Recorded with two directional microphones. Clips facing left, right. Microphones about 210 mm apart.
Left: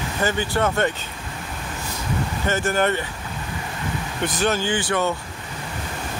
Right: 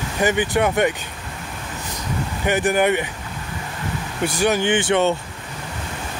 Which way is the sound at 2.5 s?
15° right (ahead or behind).